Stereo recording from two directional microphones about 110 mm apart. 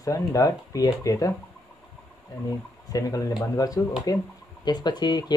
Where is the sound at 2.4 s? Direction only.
30° left (ahead or behind).